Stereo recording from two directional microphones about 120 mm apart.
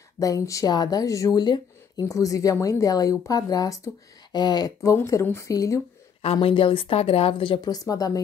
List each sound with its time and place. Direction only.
0.2 s speech: 25° left (ahead or behind)
4.9 s speech: 25° left (ahead or behind)
6.2 s a woman's voice: 50° left (ahead or behind); by 8.2 s 30° left (ahead or behind)